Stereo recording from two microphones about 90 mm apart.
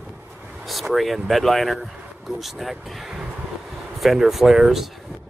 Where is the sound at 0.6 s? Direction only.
Centre (ahead or behind).